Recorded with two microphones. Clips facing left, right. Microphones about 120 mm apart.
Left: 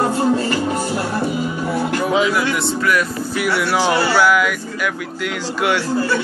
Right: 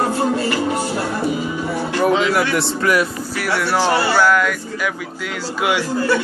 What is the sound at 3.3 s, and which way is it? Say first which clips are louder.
Speech: left 1 dB; 5° left (ahead or behind).